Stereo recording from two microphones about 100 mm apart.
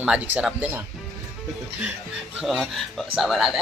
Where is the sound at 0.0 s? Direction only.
15° right (ahead or behind).